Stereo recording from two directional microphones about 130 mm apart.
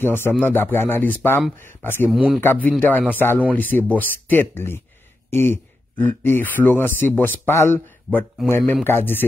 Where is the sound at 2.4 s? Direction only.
15° left (ahead or behind).